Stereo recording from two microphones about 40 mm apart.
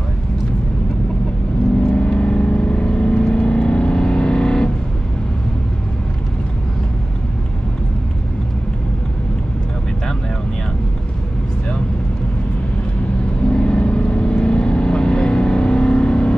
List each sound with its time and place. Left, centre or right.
1.9 s vehicle: left
13.5 s vehicle: left